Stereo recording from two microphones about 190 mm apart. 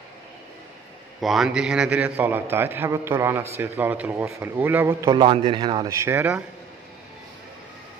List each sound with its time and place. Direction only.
1.2 s a man's voice: centre (ahead or behind)
5.1 s speech: 25° right (ahead or behind)